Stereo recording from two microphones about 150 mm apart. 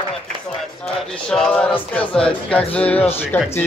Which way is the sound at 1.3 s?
5° left (ahead or behind).